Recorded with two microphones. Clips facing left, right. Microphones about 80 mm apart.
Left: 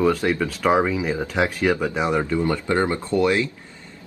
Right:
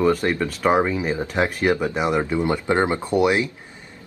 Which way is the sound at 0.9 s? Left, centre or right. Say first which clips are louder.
Even; right.